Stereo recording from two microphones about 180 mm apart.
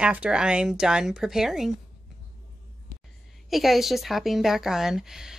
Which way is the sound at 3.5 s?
Centre (ahead or behind).